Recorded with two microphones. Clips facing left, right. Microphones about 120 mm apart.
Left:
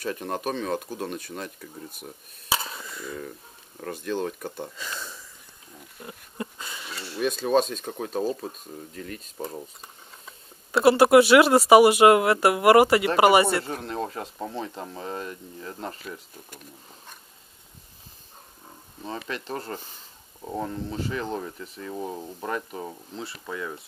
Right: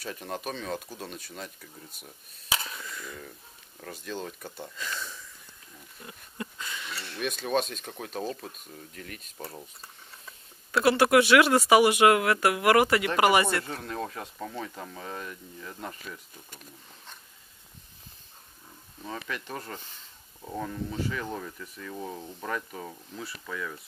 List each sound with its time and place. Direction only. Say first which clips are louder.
0.0 s speech: left 6 dB; 50° left (ahead or behind)
2.5 s a sound: left 4 dB; 30° left (ahead or behind)
3.8 s speech: left 8 dB; 55° left (ahead or behind)
4.7 s speech: even; 25° left (ahead or behind)
5.9 s a sound: left 4 dB; 30° left (ahead or behind)
7.0 s speech: left 7 dB; 30° left (ahead or behind)
10.7 s speech: left 5 dB; 30° left (ahead or behind)
19.1 s speech: left 4 dB; 30° left (ahead or behind)
22.4 s speech: left 3 dB; 25° left (ahead or behind)